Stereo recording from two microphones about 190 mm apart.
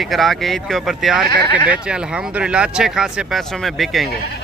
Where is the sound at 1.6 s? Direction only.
5° right (ahead or behind).